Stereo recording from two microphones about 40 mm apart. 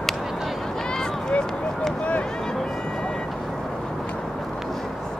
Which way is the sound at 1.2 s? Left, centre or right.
Left.